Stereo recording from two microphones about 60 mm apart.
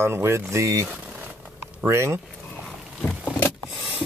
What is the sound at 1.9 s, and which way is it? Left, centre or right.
Speech, right.